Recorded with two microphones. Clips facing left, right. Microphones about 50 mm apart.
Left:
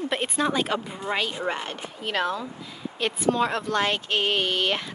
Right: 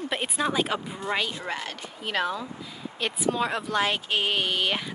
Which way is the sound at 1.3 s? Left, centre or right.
Left.